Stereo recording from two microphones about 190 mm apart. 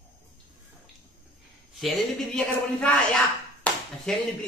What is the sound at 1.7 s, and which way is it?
A man's voice, centre (ahead or behind).